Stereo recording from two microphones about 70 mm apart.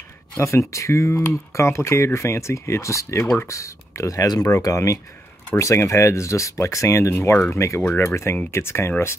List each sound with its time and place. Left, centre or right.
0.4 s speech: left